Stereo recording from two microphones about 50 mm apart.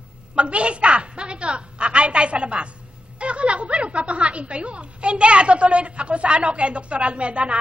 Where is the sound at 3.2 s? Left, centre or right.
Right.